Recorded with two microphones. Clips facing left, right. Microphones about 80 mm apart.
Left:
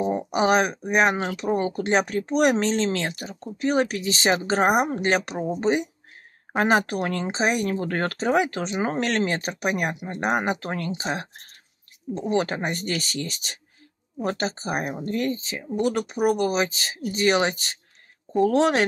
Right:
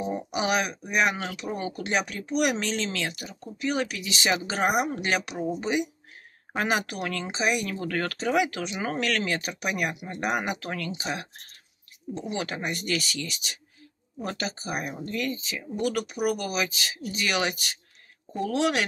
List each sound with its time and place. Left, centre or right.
0.0 s speech: left